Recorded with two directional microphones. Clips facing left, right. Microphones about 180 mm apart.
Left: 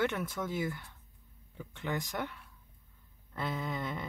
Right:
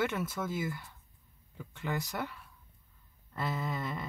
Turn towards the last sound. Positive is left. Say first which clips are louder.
# even
turn(degrees=0)  # may be behind; listen again after turning